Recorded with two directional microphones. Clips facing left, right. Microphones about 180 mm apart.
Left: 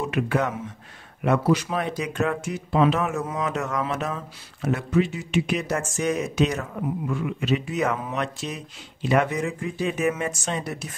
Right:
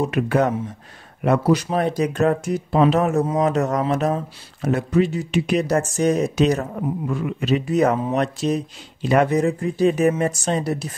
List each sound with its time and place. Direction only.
0.0 s speech: 40° right (ahead or behind)